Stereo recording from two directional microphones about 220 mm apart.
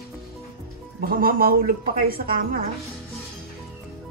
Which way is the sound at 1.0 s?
40° right (ahead or behind).